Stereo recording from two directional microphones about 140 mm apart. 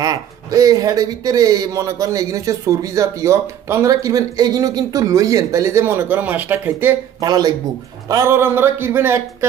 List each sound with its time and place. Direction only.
0.0 s a man's voice: 25° right (ahead or behind)
7.2 s a man's voice: 30° right (ahead or behind)